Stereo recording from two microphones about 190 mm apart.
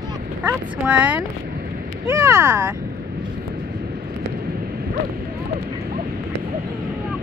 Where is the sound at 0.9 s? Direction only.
5° right (ahead or behind).